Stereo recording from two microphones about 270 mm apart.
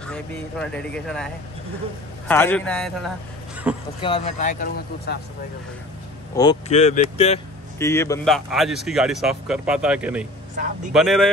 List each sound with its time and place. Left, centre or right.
0.0 s speech: centre
3.7 s a sound: centre
4.0 s speech: left
6.3 s speech: centre
6.7 s speech: left
7.8 s speech: centre
8.5 s speech: centre
10.5 s speech: right
10.9 s speech: centre